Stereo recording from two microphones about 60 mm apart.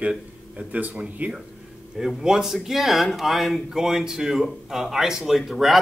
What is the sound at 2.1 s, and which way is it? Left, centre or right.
Speech, centre.